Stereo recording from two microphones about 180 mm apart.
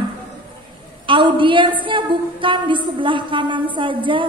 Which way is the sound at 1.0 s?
25° right (ahead or behind).